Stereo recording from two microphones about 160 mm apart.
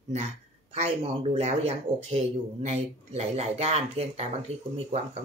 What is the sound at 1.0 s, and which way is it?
A man's voice, 40° right (ahead or behind).